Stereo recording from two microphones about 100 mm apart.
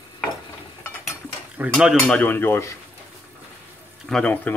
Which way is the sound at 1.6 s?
15° right (ahead or behind).